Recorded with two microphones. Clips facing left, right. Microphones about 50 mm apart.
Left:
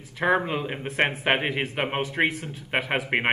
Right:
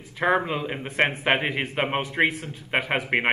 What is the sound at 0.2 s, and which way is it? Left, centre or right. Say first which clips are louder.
A man's voice: even; centre.